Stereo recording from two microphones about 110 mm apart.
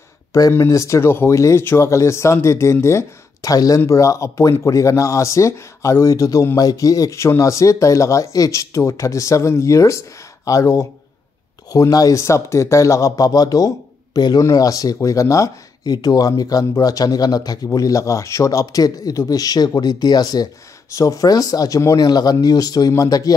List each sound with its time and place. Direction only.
0.3 s speech: 30° left (ahead or behind)